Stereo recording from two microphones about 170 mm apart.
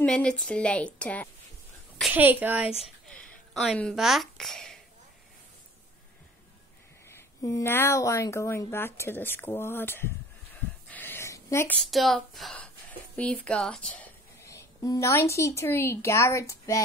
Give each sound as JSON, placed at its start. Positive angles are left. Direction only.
{"t": 0.0, "sound": "a woman's voice", "side_deg": 5}
{"t": 2.0, "sound": "a woman's voice", "side_deg": -5}
{"t": 3.6, "sound": "speech", "side_deg": 0}
{"t": 7.1, "sound": "a woman's voice", "side_deg": 15}
{"t": 10.9, "sound": "a sound", "side_deg": 10}
{"t": 13.1, "sound": "speech", "side_deg": 5}